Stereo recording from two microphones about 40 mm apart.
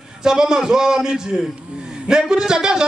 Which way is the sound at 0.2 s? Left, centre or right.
Centre.